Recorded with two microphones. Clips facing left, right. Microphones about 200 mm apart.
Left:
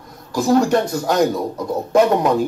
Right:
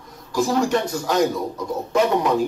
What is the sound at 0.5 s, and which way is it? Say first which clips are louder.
A man's voice: left 8 dB; 45° left (ahead or behind).